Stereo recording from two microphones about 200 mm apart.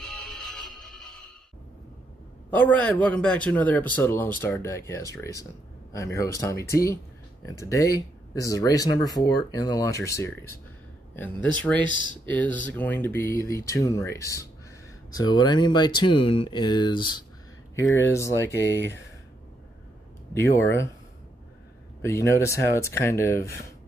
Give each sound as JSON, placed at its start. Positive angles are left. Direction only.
{"t": 0.0, "sound": "music", "side_deg": 0}
{"t": 2.5, "sound": "speech", "side_deg": 10}
{"t": 11.8, "sound": "speech", "side_deg": -20}
{"t": 12.3, "sound": "speech", "side_deg": 10}
{"t": 20.3, "sound": "speech", "side_deg": 15}
{"t": 22.0, "sound": "speech", "side_deg": 15}